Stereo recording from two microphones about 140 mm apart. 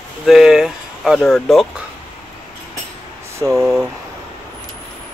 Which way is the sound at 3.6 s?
Centre (ahead or behind).